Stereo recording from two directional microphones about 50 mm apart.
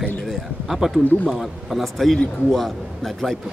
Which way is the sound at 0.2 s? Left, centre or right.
Centre.